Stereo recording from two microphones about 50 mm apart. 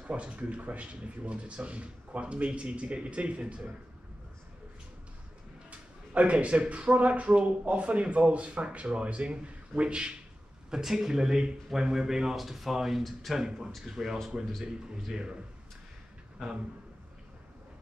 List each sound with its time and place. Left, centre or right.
0.0 s speech: right
5.7 s a sound: right
6.7 s speech: right
10.7 s speech: centre